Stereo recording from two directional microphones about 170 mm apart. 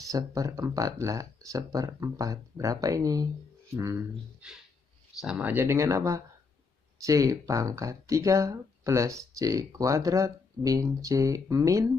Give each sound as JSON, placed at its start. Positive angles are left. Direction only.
{"t": 0.0, "sound": "speech", "side_deg": -20}
{"t": 5.2, "sound": "speech", "side_deg": -5}